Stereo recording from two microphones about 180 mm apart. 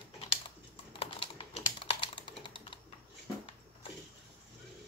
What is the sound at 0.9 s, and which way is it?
Computer keyboard, 30° left (ahead or behind).